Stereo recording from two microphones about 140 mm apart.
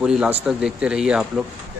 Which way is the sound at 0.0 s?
5° right (ahead or behind).